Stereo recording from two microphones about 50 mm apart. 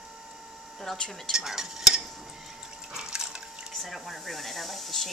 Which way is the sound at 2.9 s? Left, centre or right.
Centre.